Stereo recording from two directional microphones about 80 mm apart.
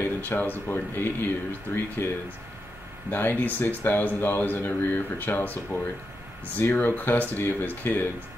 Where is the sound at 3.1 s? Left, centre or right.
Left.